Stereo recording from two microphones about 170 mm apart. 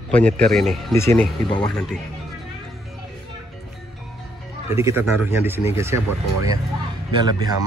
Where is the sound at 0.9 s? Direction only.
15° left (ahead or behind).